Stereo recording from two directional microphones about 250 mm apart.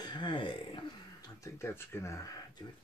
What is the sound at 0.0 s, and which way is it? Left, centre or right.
Speech, centre.